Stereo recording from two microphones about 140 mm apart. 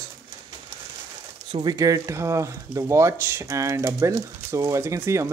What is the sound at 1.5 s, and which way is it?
Speech, 30° right (ahead or behind).